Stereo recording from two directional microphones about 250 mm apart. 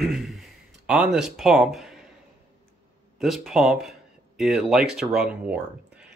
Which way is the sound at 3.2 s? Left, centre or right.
Centre.